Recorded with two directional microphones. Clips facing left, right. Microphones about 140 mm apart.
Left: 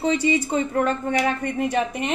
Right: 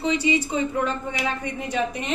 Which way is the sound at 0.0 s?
50° left (ahead or behind).